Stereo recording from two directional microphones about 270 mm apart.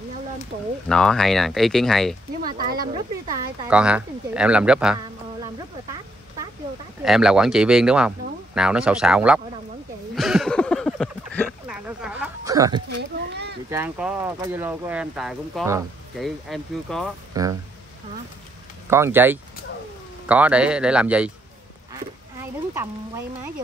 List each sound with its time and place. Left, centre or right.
0.8 s speech: centre
2.4 s speech: right
3.3 s speech: centre
7.0 s speech: centre
10.1 s a sound: centre
13.3 s a sound: right
13.7 s speech: centre
17.3 s speech: centre
18.9 s speech: centre
22.4 s speech: centre